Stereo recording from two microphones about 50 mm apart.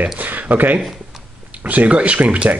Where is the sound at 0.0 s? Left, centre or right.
Right.